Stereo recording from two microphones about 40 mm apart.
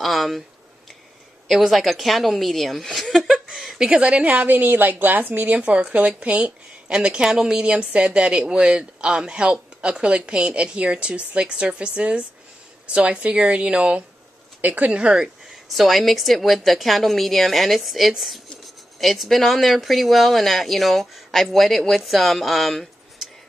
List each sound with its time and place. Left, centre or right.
0.0 s speech: centre
1.7 s speech: centre
3.5 s a sound: centre
3.8 s speech: right
4.2 s a woman's voice: right
5.6 s speech: right
14.6 s speech: right
14.9 s speech: right
15.7 s speech: centre